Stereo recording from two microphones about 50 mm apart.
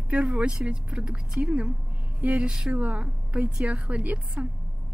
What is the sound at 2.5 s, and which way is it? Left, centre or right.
Speech, centre.